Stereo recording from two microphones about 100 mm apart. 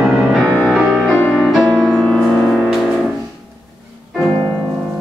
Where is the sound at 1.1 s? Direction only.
15° left (ahead or behind).